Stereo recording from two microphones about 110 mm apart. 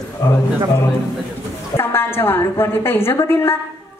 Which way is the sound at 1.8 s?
20° left (ahead or behind).